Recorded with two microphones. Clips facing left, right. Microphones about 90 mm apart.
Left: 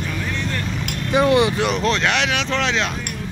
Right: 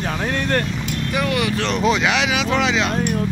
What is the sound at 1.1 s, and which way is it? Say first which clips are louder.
Speech: left 6 dB; 25° left (ahead or behind).